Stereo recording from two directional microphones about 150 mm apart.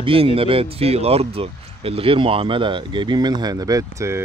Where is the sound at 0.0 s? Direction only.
40° right (ahead or behind).